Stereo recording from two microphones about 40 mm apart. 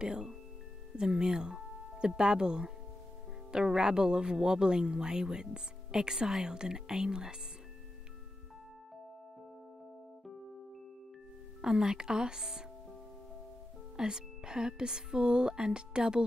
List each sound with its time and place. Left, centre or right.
0.0 s a woman's voice: right
11.6 s a woman's voice: centre
13.9 s speech: centre